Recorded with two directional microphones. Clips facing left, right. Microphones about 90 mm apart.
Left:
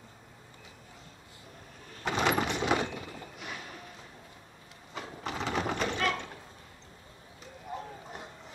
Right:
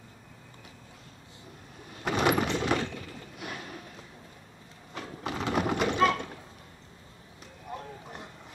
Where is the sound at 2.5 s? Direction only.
15° left (ahead or behind).